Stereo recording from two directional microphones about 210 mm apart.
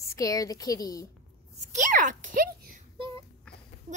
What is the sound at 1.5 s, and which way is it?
A child's voice, 35° right (ahead or behind).